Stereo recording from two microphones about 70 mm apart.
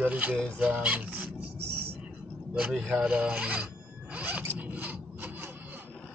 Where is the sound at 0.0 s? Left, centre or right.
Right.